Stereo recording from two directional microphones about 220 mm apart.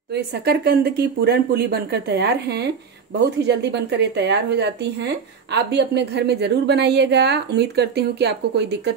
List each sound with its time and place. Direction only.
0.1 s a woman's voice: 45° right (ahead or behind)